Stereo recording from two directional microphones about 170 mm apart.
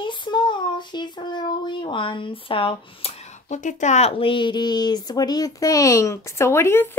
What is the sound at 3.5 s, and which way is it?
Speech, 45° left (ahead or behind).